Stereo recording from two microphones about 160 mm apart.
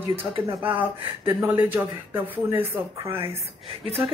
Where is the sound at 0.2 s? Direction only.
15° right (ahead or behind).